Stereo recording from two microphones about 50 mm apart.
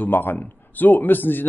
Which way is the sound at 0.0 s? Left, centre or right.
Left.